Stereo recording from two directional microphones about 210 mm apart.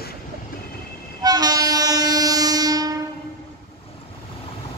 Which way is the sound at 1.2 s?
20° right (ahead or behind).